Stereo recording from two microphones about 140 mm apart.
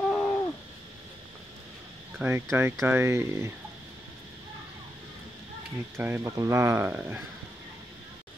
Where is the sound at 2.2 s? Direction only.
15° right (ahead or behind).